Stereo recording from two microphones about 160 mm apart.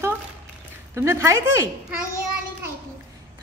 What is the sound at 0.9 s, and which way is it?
Speech, 15° right (ahead or behind).